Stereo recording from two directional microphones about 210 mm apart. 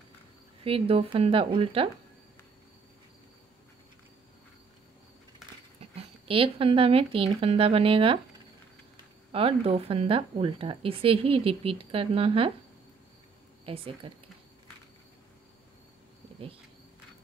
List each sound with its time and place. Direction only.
0.7 s speech: 25° right (ahead or behind)
5.8 s speech: 25° right (ahead or behind)
9.3 s speech: 25° right (ahead or behind)
13.7 s speech: 25° right (ahead or behind)